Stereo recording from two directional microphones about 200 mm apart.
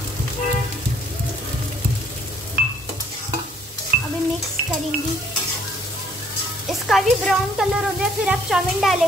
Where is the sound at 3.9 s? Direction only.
45° right (ahead or behind).